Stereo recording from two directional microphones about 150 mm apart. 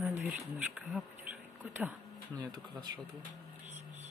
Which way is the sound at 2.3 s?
30° right (ahead or behind).